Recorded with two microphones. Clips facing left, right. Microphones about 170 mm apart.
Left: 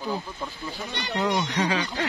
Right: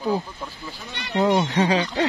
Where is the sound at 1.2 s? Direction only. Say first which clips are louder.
Right 6 dB; 30° right (ahead or behind).